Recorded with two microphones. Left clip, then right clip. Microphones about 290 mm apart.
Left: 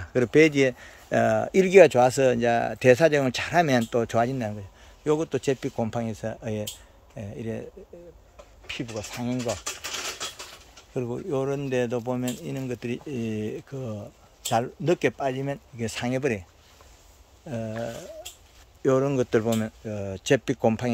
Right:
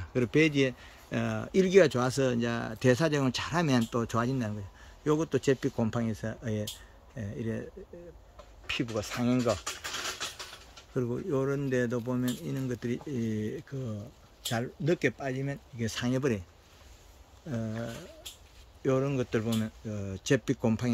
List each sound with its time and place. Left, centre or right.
0.0 s speech: centre
8.6 s speech: centre
9.7 s typewriter: left
11.0 s speech: centre
17.5 s speech: centre
18.8 s speech: centre